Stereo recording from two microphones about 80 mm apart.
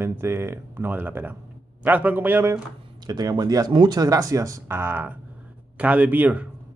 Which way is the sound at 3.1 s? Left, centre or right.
Right.